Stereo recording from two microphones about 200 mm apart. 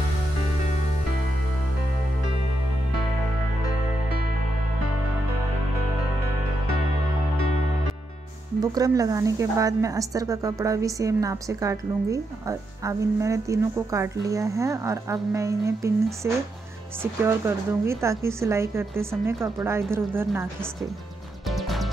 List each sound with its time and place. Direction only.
8.5 s a woman's voice: 20° right (ahead or behind)
21.5 s music: centre (ahead or behind)